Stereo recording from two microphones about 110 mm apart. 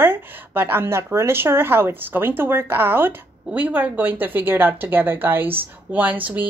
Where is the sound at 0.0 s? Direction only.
20° right (ahead or behind).